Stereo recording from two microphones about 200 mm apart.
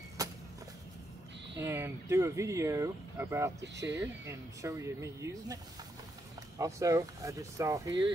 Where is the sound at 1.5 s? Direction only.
15° right (ahead or behind).